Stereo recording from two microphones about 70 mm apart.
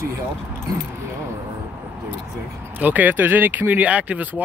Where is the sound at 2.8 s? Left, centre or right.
Right.